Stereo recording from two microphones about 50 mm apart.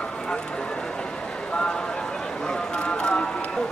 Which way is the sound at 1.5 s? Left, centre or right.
Centre.